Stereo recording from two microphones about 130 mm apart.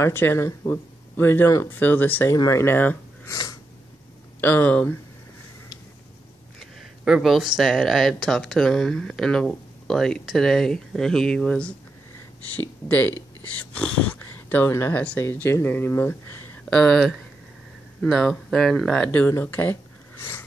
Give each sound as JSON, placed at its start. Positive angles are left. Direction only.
{"t": 0.0, "sound": "speech", "side_deg": 15}
{"t": 2.3, "sound": "speech", "side_deg": 25}
{"t": 4.4, "sound": "speech", "side_deg": 15}
{"t": 6.6, "sound": "speech", "side_deg": 0}
{"t": 16.7, "sound": "speech", "side_deg": 5}